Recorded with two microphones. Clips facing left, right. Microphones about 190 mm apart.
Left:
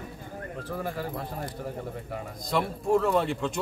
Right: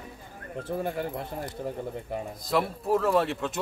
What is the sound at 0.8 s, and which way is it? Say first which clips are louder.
Speech: right 1 dB; 25° right (ahead or behind).